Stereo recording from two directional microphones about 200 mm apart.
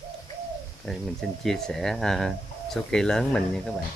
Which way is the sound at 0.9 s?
Centre (ahead or behind).